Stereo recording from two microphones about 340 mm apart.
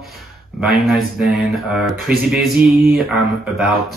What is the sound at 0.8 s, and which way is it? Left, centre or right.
Speech, centre.